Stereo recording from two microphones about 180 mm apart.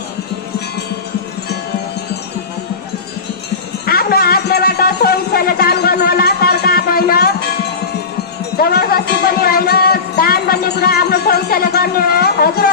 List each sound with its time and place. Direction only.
3.8 s music: 55° left (ahead or behind)
8.5 s music: 55° left (ahead or behind)